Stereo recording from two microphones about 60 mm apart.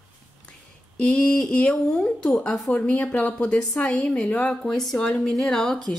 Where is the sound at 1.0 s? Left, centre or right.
Centre.